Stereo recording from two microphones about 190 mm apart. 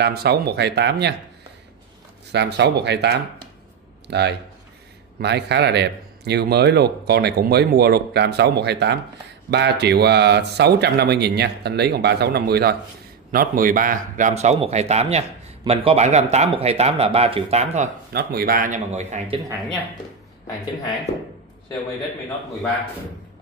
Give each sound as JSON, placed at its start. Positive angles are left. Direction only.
{"t": 0.0, "sound": "speech", "side_deg": -55}
{"t": 2.3, "sound": "a man's voice", "side_deg": -65}
{"t": 18.1, "sound": "a man's voice", "side_deg": -50}